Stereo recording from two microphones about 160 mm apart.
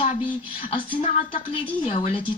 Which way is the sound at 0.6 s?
35° left (ahead or behind).